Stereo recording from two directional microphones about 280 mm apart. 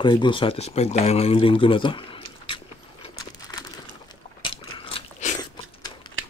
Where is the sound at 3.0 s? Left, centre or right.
Centre.